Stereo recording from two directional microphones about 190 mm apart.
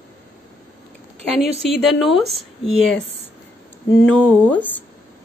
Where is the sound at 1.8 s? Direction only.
Centre (ahead or behind).